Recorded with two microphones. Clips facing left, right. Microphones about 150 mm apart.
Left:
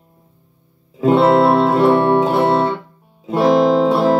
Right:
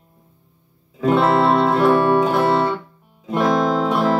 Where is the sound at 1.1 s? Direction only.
25° left (ahead or behind).